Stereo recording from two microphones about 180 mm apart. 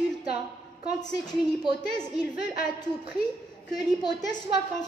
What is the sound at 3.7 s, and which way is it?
Speech, 20° left (ahead or behind).